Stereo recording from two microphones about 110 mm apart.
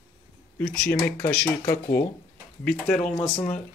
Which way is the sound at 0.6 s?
15° left (ahead or behind).